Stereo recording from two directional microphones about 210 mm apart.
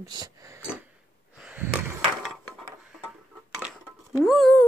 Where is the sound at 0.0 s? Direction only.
20° right (ahead or behind).